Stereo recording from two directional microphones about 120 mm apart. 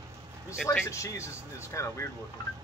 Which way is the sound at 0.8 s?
25° left (ahead or behind).